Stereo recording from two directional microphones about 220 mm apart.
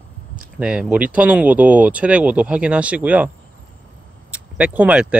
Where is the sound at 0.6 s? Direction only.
5° right (ahead or behind).